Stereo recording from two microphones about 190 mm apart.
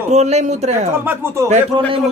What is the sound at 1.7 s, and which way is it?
Speech, 25° right (ahead or behind).